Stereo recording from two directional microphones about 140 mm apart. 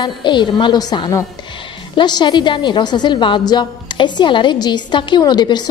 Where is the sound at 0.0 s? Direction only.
35° left (ahead or behind).